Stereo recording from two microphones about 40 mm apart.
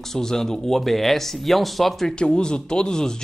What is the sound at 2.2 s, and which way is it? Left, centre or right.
Speech, left.